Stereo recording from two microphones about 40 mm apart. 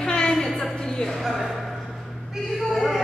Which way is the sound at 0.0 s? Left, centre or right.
Centre.